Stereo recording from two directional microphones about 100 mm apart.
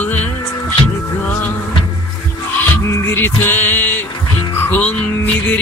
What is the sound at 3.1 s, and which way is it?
Music, 20° left (ahead or behind).